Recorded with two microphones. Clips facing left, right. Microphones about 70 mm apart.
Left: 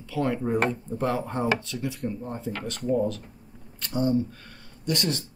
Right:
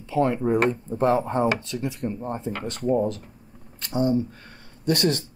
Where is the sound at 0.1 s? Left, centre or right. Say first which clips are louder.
Right 4 dB; right.